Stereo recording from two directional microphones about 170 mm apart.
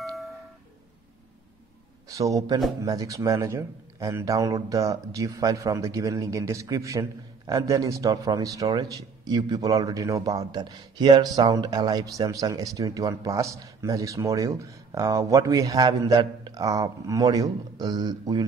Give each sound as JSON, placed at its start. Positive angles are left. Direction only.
{"t": 2.0, "sound": "speech", "side_deg": -20}